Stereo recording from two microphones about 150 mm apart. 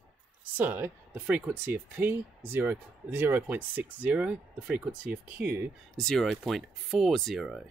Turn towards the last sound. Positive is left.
turn(degrees=0)  # may be behind; listen again after turning